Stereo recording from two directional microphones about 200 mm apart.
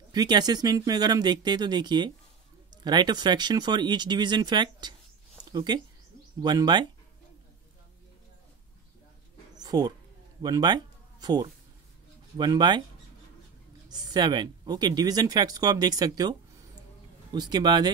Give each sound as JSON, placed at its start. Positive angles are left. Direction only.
{"t": 0.1, "sound": "speech", "side_deg": -20}
{"t": 9.6, "sound": "a sound", "side_deg": -20}
{"t": 10.4, "sound": "speech", "side_deg": -20}
{"t": 13.8, "sound": "speech", "side_deg": -20}